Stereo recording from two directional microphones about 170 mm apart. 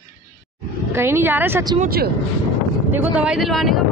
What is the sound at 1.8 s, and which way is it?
Speech, 65° right (ahead or behind).